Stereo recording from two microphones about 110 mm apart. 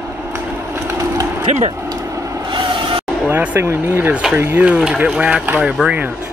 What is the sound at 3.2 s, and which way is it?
Speech, 20° right (ahead or behind).